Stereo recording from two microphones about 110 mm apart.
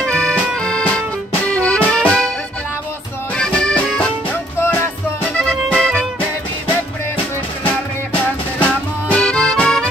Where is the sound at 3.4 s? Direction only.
10° left (ahead or behind).